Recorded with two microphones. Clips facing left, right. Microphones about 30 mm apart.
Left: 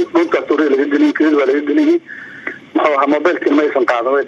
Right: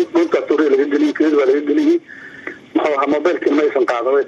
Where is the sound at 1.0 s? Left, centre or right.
Left.